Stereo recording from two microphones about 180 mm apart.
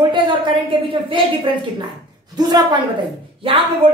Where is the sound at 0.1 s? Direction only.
25° right (ahead or behind).